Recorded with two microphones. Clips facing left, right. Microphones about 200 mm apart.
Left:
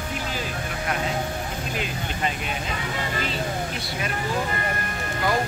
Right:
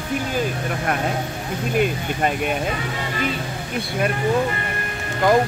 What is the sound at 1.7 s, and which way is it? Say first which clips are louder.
Speech: right 9 dB; 55° right (ahead or behind).